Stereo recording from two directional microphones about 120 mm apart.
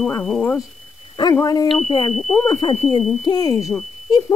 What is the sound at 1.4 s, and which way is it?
Speech, 30° left (ahead or behind).